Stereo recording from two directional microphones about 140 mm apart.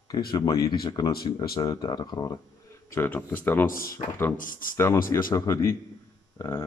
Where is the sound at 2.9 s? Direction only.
15° left (ahead or behind).